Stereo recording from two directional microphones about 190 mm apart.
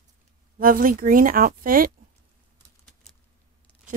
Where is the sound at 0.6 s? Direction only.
45° right (ahead or behind).